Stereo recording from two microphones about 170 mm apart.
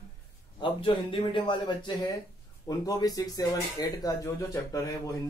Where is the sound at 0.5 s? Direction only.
30° left (ahead or behind).